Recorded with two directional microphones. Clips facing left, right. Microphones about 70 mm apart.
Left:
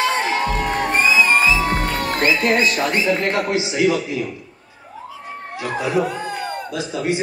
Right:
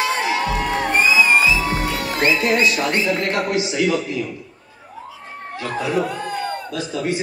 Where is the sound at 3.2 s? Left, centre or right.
Left.